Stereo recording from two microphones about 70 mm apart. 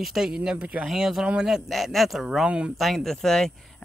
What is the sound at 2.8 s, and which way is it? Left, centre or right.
Speech, centre.